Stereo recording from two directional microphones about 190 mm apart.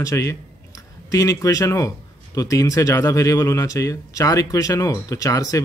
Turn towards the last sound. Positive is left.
turn(degrees=20)  # may be behind; listen again after turning